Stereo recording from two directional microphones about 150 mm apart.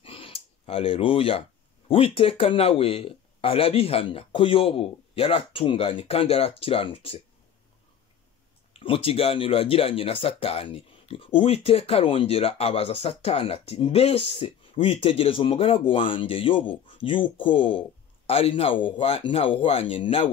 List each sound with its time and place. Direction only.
0.0 s a sound: 40° left (ahead or behind)
1.9 s speech: 40° left (ahead or behind)
8.7 s speech: 40° left (ahead or behind)